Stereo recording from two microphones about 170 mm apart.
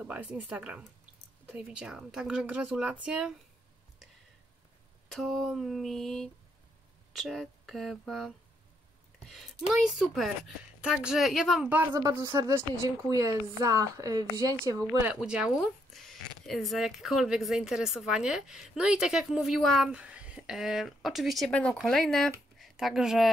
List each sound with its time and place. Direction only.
0.0 s speech: 10° right (ahead or behind)
5.1 s speech: centre (ahead or behind)
9.7 s speech: centre (ahead or behind)
11.9 s a woman's voice: 20° right (ahead or behind)
15.1 s speech: 5° right (ahead or behind)